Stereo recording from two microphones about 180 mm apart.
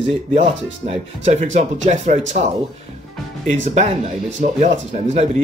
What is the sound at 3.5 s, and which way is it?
Speech, 40° right (ahead or behind).